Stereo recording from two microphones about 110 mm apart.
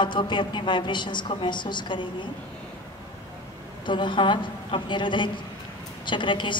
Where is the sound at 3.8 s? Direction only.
45° left (ahead or behind).